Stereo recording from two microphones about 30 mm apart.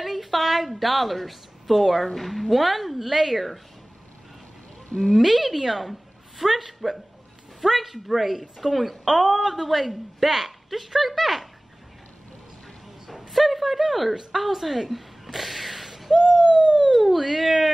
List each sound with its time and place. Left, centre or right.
0.0 s a woman's voice: centre
5.1 s a woman's voice: centre
13.3 s a woman's voice: centre
14.3 s a sound: centre
16.3 s bird: right
16.9 s a woman's voice: centre